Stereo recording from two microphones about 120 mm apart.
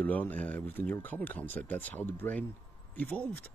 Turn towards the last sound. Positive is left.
turn(degrees=15)  # may be behind; listen again after turning